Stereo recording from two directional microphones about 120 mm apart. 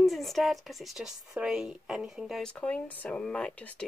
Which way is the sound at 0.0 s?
Centre (ahead or behind).